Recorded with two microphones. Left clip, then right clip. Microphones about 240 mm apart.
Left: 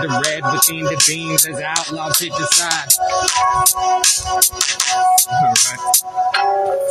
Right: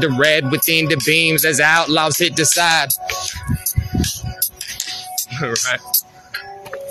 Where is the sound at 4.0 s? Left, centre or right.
Left.